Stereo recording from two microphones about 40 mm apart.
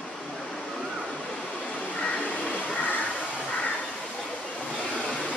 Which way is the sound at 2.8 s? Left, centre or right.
Left.